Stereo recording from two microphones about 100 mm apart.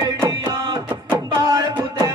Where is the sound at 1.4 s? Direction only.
40° right (ahead or behind).